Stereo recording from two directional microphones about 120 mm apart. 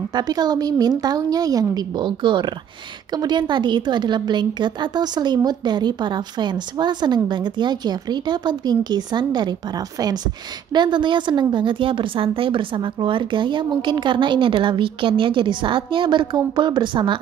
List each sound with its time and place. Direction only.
0.1 s a woman's voice: 35° right (ahead or behind)